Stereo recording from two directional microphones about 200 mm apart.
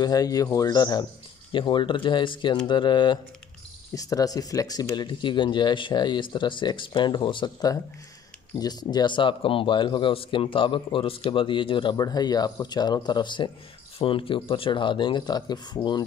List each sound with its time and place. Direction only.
0.0 s speech: 20° left (ahead or behind)